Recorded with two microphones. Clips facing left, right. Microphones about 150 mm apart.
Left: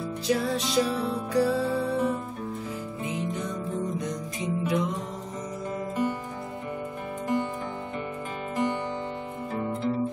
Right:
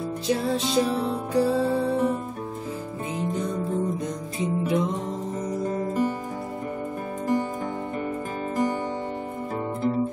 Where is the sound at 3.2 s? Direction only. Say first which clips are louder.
Right 7 dB; 35° right (ahead or behind).